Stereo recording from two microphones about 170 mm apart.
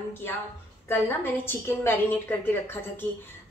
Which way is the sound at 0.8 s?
15° left (ahead or behind).